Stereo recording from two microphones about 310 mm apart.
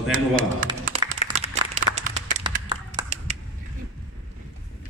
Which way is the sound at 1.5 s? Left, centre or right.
Right.